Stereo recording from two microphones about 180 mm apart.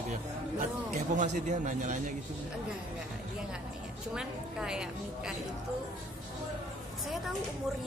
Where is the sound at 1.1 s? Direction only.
40° right (ahead or behind).